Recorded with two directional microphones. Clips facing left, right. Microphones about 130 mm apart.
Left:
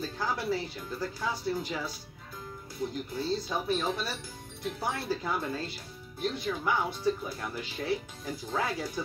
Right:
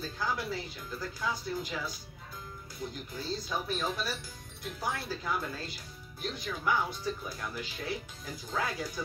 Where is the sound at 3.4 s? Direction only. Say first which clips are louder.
Left 3 dB; 30° left (ahead or behind).